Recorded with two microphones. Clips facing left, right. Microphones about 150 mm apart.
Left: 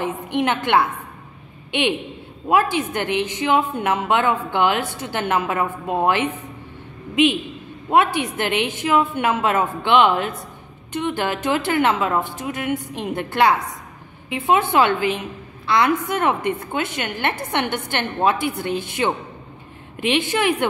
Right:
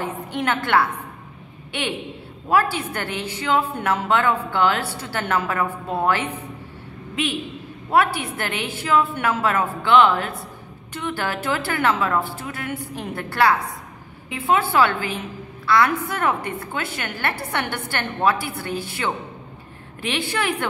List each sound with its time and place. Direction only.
0.0 s a woman's voice: 20° left (ahead or behind)
7.9 s a woman's voice: 20° left (ahead or behind)